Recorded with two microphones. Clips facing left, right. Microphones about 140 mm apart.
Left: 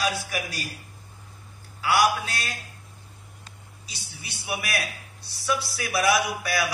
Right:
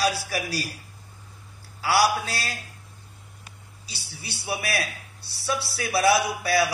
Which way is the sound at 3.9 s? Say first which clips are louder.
Right 3 dB; 30° right (ahead or behind).